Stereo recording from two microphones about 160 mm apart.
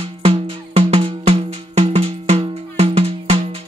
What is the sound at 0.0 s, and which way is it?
Music, 40° right (ahead or behind).